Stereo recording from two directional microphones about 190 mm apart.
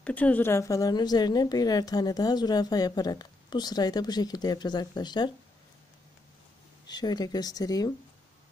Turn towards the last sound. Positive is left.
turn(degrees=20)  # may be behind; listen again after turning